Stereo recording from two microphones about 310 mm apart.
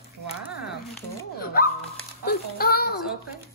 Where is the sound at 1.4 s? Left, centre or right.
Left.